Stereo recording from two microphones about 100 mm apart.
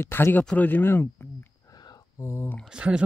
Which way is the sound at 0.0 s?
25° left (ahead or behind).